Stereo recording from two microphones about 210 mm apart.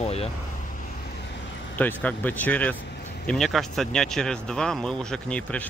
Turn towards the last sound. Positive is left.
turn(degrees=5)  # may be behind; listen again after turning